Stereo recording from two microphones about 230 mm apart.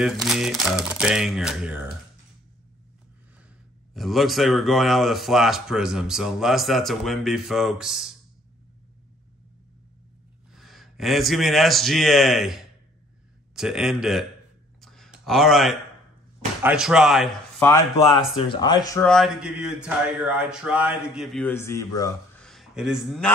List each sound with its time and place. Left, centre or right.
0.0 s speech: centre
3.9 s speech: centre
10.5 s speech: centre
14.8 s a sound: centre
16.6 s speech: centre
18.0 s speech: left
19.0 s speech: centre
22.4 s a sound: centre